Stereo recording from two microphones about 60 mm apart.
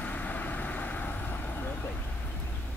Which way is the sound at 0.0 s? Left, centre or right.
Left.